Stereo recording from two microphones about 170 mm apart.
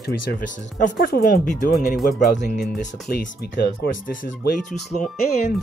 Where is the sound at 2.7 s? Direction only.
70° left (ahead or behind).